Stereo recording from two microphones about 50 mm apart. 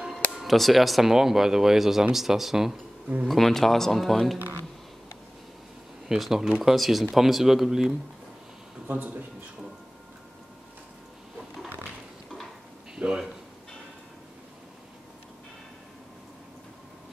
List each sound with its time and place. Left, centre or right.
0.3 s speech: centre
3.3 s speech: centre
6.0 s speech: centre
8.8 s speech: right
12.9 s speech: centre